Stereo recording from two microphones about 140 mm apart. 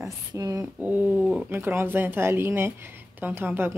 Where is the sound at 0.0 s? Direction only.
25° right (ahead or behind).